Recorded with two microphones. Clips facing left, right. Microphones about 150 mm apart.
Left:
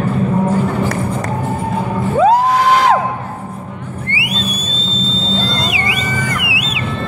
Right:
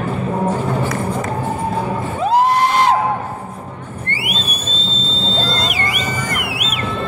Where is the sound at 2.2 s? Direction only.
90° left.